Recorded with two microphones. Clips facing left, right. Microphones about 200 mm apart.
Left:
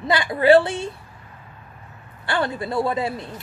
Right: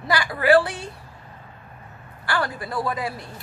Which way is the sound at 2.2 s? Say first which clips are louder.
Left 3 dB; 25° left (ahead or behind).